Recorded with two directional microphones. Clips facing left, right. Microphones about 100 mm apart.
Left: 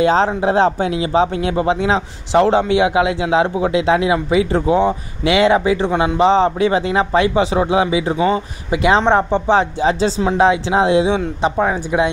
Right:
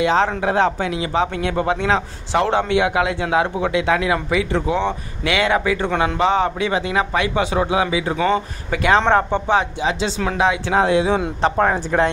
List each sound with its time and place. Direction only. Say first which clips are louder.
0.0 s speech: left 3 dB; 35° left (ahead or behind)
4.5 s speech: left 5 dB; 40° left (ahead or behind)
11.4 s speech: even; 10° left (ahead or behind)